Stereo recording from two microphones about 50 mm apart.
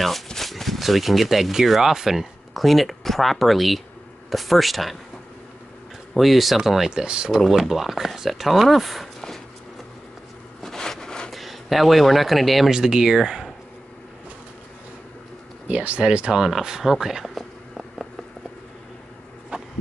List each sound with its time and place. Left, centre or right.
0.0 s speech: centre
6.1 s speech: centre
7.4 s speech: centre
10.6 s a sound: centre
11.3 s speech: centre
12.7 s speech: centre
15.7 s speech: right; by 17.3 s centre
17.3 s a sound: centre
19.5 s a sound: right